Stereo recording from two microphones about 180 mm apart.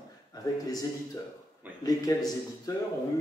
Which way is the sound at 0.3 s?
20° left (ahead or behind).